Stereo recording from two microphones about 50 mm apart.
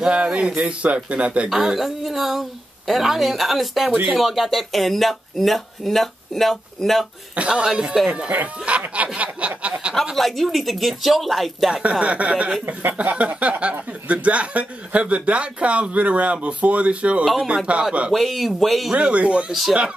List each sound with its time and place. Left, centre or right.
0.0 s speech: centre
1.5 s speech: centre
7.3 s speech: centre
8.3 s speech: right
10.1 s speech: centre
11.9 s speech: right
17.2 s speech: centre
17.7 s speech: right
18.1 s speech: centre
18.9 s speech: right